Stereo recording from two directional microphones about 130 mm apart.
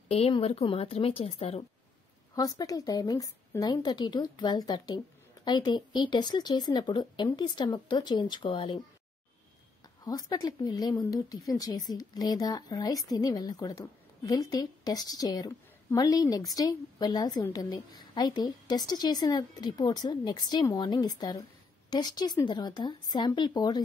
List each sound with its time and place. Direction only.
0.1 s speech: 50° left (ahead or behind)
2.3 s a woman's voice: 30° left (ahead or behind)
10.0 s a woman's voice: 30° left (ahead or behind)